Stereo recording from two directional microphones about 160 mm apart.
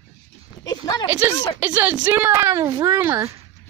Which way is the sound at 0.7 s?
25° left (ahead or behind).